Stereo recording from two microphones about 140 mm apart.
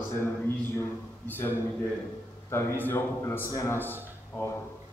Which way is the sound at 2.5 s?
15° left (ahead or behind).